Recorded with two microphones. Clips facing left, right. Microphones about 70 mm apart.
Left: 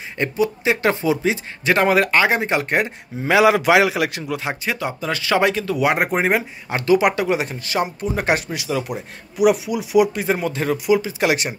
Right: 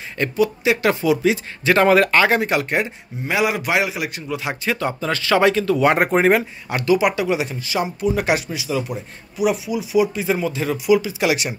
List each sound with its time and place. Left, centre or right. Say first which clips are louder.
0.2 s speech: even; centre
0.7 s speech: even; left
2.6 s speech: left 1 dB; left
3.3 s a man's voice: left 6 dB; left
4.6 s speech: right 3 dB; centre
6.7 s speech: left 1 dB; left
7.0 s speech: left 1 dB; left
10.2 s speech: even; left